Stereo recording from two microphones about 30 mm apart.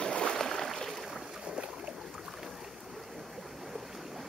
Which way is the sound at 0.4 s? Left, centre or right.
Centre.